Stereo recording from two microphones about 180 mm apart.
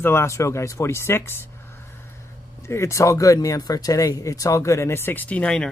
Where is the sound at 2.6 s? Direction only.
15° left (ahead or behind).